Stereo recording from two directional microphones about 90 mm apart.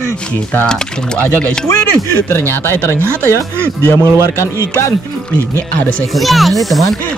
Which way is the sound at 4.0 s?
30° right (ahead or behind).